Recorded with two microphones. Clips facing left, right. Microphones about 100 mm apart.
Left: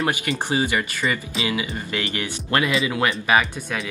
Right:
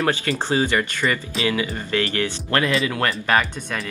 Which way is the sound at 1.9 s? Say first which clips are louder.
Right 5 dB; 15° left (ahead or behind).